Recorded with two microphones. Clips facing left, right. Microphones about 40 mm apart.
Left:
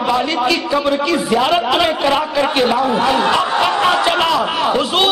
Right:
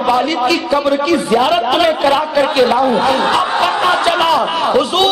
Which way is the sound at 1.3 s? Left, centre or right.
Centre.